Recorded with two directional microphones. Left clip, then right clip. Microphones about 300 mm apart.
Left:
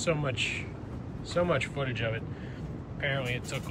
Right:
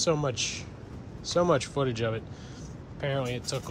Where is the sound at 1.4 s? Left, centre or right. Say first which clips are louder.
Right 3 dB; centre.